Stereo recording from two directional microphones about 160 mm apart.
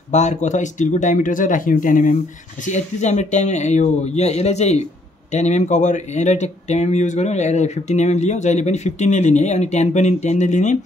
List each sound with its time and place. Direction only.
0.1 s speech: 45° left (ahead or behind)